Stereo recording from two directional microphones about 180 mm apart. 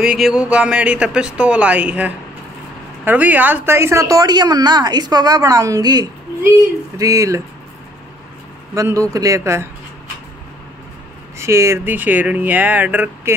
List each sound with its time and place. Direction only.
0.0 s a woman's voice: 5° right (ahead or behind)
8.7 s speech: 15° right (ahead or behind)
11.3 s speech: 15° right (ahead or behind)